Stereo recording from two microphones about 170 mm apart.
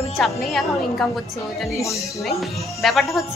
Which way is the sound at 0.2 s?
Centre (ahead or behind).